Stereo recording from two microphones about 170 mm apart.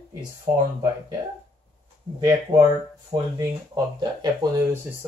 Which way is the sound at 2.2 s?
20° right (ahead or behind).